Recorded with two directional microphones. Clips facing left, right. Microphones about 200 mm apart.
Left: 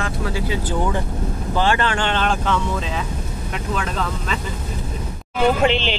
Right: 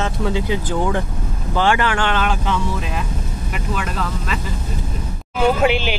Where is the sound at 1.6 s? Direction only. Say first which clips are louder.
Right 3 dB; 10° right (ahead or behind).